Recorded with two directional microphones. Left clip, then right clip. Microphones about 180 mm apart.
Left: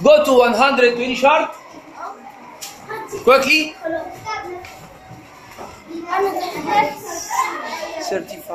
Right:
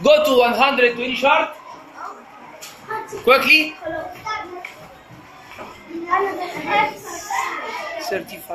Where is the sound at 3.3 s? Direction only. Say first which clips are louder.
Even; 10° left (ahead or behind).